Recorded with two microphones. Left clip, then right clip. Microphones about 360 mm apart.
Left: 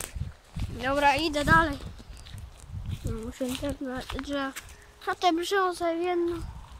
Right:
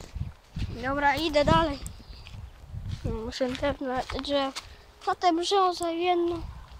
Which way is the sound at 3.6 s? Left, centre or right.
Right.